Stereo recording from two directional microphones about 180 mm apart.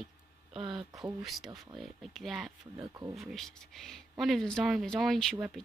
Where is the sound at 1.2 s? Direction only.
Centre (ahead or behind).